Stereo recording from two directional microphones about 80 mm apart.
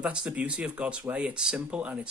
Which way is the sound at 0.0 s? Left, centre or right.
Centre.